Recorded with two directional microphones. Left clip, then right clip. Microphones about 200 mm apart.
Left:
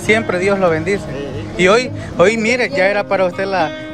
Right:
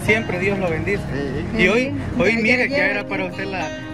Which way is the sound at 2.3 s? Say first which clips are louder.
Left 2 dB; 30° left (ahead or behind).